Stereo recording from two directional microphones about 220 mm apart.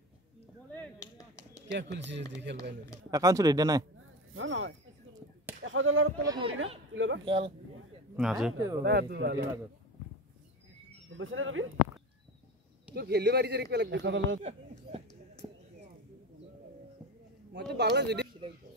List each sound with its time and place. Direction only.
0.7 s chop: 15° left (ahead or behind)
1.7 s speech: 55° right (ahead or behind)
3.1 s speech: 15° right (ahead or behind)
4.0 s a sound: 65° right (ahead or behind)
5.6 s speech: 60° right (ahead or behind)
6.2 s speech: 20° right (ahead or behind)
6.9 s speech: 55° right (ahead or behind)
7.2 s speech: 25° right (ahead or behind)
8.2 s speech: centre (ahead or behind)
8.8 s speech: 50° right (ahead or behind)
11.1 s speech: 65° right (ahead or behind)
12.9 s speech: 50° right (ahead or behind)
17.5 s speech: 50° right (ahead or behind)